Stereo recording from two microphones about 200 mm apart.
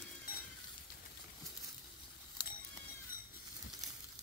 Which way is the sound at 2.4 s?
20° left (ahead or behind).